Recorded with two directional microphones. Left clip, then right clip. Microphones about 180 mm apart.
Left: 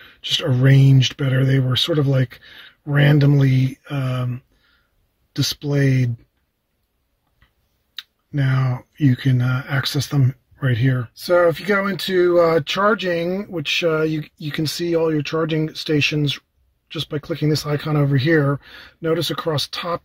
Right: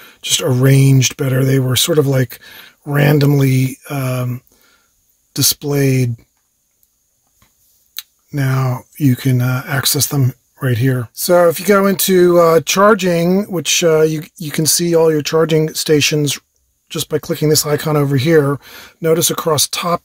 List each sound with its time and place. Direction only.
0.0 s speech: 45° right (ahead or behind)
8.3 s speech: 45° right (ahead or behind)